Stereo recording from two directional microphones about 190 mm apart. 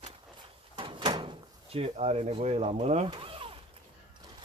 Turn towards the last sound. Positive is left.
turn(degrees=-30)  # may be behind; listen again after turning